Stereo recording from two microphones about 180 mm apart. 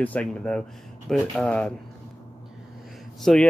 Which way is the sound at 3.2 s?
5° left (ahead or behind).